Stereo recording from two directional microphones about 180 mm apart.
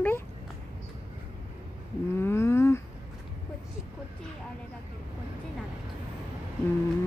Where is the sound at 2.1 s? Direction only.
15° left (ahead or behind).